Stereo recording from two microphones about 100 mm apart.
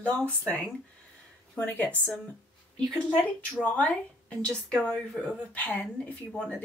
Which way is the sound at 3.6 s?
15° left (ahead or behind).